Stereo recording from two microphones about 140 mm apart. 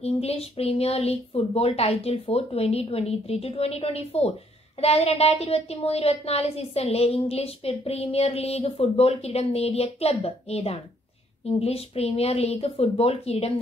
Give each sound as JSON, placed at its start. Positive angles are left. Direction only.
{"t": 0.0, "sound": "a woman's voice", "side_deg": 45}